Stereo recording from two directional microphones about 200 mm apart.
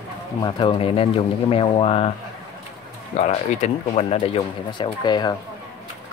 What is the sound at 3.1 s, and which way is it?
Speech, 35° left (ahead or behind).